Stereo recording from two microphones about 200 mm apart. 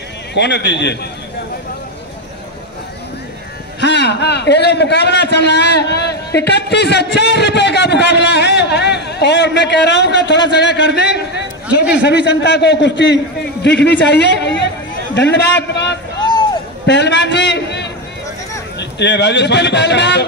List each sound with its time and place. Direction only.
0.3 s a man's voice: 60° left (ahead or behind)
3.8 s a man's voice: 60° left (ahead or behind)
16.2 s hubbub: 20° left (ahead or behind)
16.8 s a man's voice: 60° left (ahead or behind)